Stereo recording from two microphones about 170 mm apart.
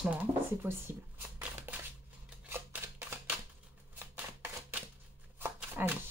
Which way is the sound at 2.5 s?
15° right (ahead or behind).